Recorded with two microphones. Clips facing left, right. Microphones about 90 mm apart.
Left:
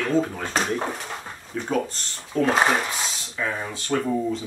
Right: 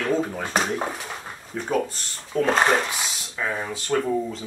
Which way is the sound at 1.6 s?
5° right (ahead or behind).